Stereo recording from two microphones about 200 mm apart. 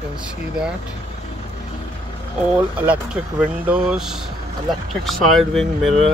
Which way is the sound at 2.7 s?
5° right (ahead or behind).